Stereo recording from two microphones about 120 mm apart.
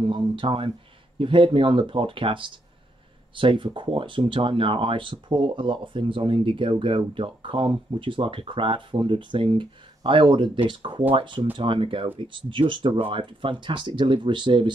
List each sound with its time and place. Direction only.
0.0 s speech: 45° right (ahead or behind)